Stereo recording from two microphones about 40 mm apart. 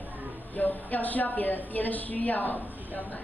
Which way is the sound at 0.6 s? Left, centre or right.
Left.